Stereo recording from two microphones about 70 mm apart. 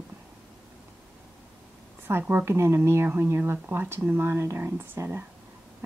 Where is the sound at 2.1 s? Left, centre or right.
Right.